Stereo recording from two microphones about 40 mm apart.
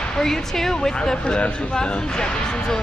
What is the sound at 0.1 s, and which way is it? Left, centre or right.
Speech, centre.